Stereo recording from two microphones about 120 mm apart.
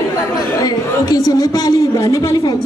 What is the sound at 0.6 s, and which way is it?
A man's voice, 30° left (ahead or behind).